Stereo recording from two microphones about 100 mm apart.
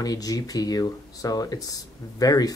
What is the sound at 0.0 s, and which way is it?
Speech, 40° left (ahead or behind).